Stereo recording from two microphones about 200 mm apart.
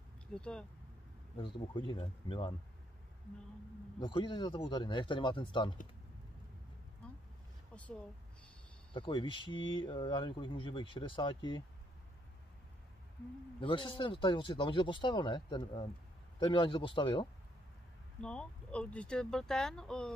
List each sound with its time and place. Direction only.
0.3 s speech: 5° left (ahead or behind)
1.3 s speech: 25° left (ahead or behind)
4.0 s speech: 25° left (ahead or behind)
8.9 s speech: 25° left (ahead or behind)
13.6 s speech: 25° left (ahead or behind)
18.2 s speech: 5° left (ahead or behind)